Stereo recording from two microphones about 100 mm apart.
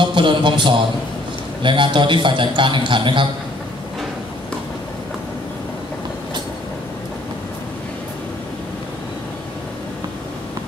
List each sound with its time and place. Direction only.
0.0 s a man's voice: 55° right (ahead or behind)